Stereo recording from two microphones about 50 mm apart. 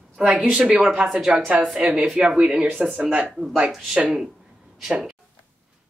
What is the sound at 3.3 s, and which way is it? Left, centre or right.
Speech, centre.